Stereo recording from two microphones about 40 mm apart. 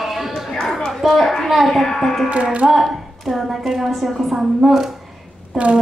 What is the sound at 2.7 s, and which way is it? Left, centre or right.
A woman's voice, centre.